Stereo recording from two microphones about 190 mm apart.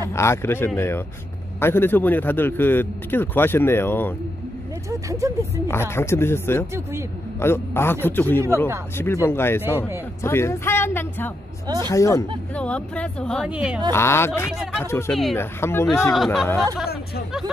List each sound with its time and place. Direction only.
0.1 s a man's voice: 15° left (ahead or behind)
5.2 s speech: 15° right (ahead or behind)
5.7 s a man's voice: 10° left (ahead or behind)
6.7 s speech: 15° right (ahead or behind)
7.3 s a man's voice: 10° left (ahead or behind)
11.6 s speech: 20° right (ahead or behind)
11.9 s a man's voice: 15° left (ahead or behind); by 13.7 s 5° right (ahead or behind)
13.9 s a man's voice: 15° left (ahead or behind)
16.7 s a woman's voice: centre (ahead or behind)